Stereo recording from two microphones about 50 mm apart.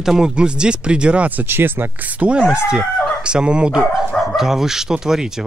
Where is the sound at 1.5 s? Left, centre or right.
Right.